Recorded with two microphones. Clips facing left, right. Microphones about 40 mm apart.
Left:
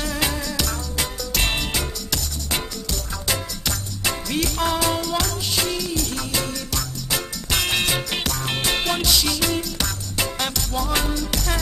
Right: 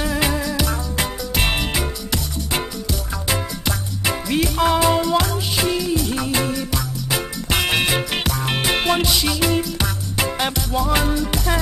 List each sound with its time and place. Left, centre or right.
0.0 s music: centre